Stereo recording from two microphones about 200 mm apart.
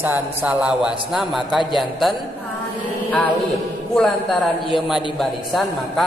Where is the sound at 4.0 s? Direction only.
Centre (ahead or behind).